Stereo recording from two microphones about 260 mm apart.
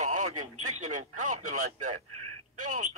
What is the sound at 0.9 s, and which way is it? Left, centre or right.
A man's voice, right.